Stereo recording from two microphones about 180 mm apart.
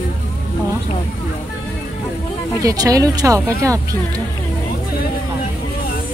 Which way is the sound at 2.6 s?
20° right (ahead or behind).